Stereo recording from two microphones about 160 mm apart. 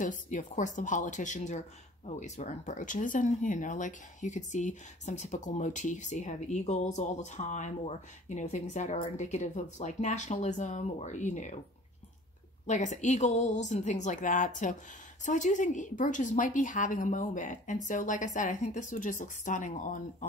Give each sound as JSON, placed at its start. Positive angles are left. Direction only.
{"t": 0.0, "sound": "speech", "side_deg": 50}
{"t": 12.6, "sound": "speech", "side_deg": 50}